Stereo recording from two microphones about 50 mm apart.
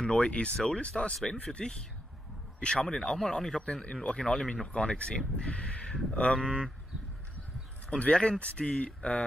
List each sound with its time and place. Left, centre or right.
0.0 s speech: centre
8.0 s speech: left